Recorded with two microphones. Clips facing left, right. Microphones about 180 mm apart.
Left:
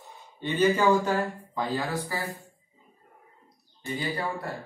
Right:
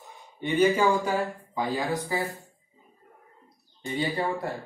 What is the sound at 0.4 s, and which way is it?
Speech, 10° right (ahead or behind).